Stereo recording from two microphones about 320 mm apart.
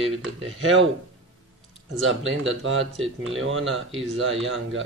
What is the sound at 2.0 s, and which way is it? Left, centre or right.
Speech, right.